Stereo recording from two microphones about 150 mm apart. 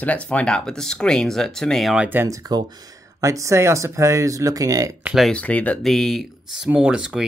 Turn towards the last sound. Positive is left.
turn(degrees=-5)  # may be behind; listen again after turning